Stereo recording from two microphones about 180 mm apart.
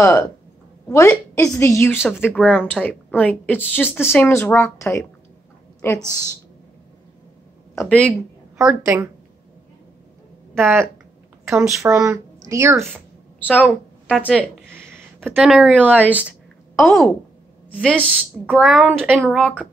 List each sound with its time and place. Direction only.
0.0 s a woman's voice: 15° left (ahead or behind)
2.0 s speech: 5° right (ahead or behind)
2.2 s a woman's voice: 10° left (ahead or behind)
7.7 s speech: 10° left (ahead or behind)
8.1 s a woman's voice: 15° right (ahead or behind)
10.5 s speech: 15° right (ahead or behind)
13.7 s a woman's voice: 5° left (ahead or behind)
14.7 s a woman's voice: 15° right (ahead or behind)